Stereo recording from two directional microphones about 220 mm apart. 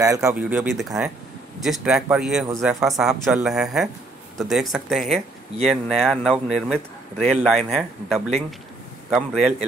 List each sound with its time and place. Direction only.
0.0 s speech: 15° right (ahead or behind)